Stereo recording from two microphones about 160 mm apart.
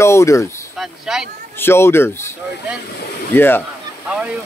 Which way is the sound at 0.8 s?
5° right (ahead or behind).